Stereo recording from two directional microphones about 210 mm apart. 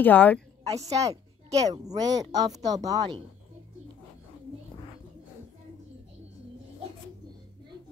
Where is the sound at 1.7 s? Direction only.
20° right (ahead or behind).